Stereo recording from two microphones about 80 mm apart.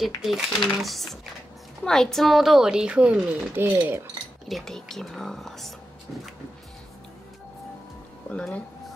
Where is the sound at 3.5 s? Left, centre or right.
Right.